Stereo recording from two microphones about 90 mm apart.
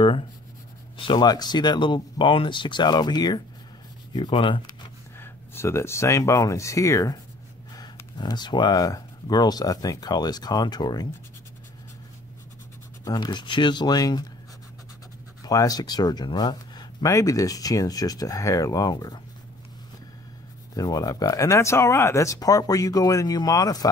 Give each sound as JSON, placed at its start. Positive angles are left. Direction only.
{"t": 0.9, "sound": "speech", "side_deg": 65}
{"t": 4.3, "sound": "speech", "side_deg": 70}
{"t": 5.2, "sound": "speech", "side_deg": 25}
{"t": 8.2, "sound": "speech", "side_deg": 55}
{"t": 13.0, "sound": "speech", "side_deg": 50}
{"t": 15.4, "sound": "speech", "side_deg": 45}
{"t": 20.7, "sound": "speech", "side_deg": 45}